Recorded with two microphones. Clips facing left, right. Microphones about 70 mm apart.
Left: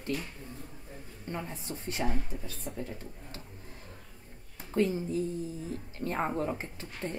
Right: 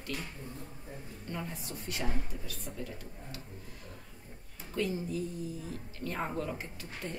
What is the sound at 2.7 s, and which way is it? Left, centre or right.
Speech, left.